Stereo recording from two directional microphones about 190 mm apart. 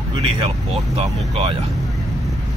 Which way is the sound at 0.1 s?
25° right (ahead or behind).